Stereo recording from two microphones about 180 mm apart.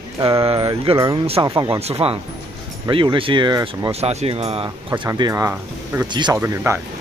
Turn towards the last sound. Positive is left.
turn(degrees=-15)  # may be behind; listen again after turning